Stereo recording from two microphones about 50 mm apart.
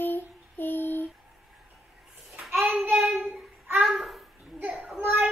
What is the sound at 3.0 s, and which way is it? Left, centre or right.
Child singing, centre.